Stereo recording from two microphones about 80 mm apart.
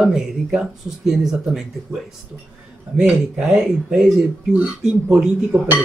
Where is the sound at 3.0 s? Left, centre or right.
Centre.